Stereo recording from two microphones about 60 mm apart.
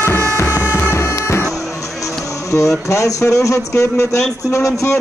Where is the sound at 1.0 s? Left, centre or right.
Left.